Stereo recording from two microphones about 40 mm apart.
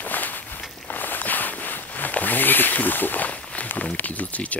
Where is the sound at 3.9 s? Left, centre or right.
Left.